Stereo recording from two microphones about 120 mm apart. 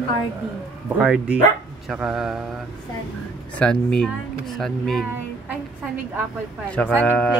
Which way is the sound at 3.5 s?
10° left (ahead or behind).